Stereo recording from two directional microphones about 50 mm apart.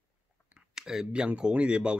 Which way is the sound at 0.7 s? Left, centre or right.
Centre.